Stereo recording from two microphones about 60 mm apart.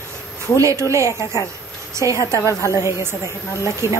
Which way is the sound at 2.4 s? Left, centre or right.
Left.